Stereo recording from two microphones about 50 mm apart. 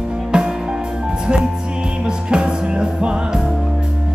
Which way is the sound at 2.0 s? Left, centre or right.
Centre.